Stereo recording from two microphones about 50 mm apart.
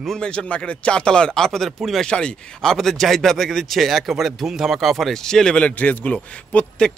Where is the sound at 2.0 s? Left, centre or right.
Centre.